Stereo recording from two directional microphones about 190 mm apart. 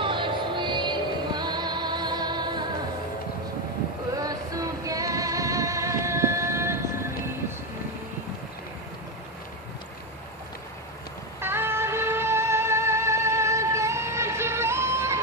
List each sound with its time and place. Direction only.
0.0 s music: 25° right (ahead or behind)
4.2 s music: 20° right (ahead or behind)
11.4 s music: 10° right (ahead or behind)